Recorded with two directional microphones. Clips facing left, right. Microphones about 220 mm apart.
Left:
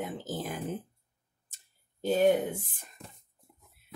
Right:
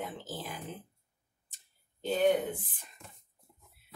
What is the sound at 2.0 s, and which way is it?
Speech, 45° left (ahead or behind).